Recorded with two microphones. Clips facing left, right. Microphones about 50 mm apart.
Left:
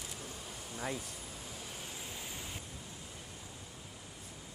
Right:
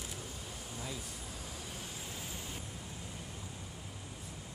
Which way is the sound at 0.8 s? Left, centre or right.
Left.